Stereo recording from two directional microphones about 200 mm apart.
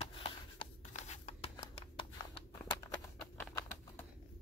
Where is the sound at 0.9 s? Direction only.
35° left (ahead or behind).